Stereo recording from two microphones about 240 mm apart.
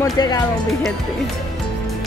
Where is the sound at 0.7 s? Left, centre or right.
Centre.